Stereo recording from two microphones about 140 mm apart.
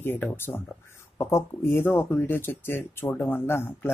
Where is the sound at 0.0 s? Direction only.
15° left (ahead or behind).